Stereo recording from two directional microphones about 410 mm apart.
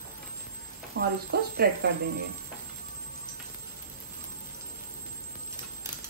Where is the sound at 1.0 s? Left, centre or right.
Right.